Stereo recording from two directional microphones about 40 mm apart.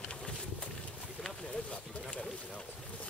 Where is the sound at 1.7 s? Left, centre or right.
Left.